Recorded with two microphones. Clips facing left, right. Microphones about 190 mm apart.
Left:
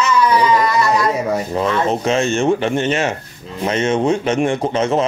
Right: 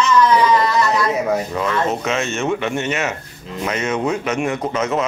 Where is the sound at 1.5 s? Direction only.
30° left (ahead or behind).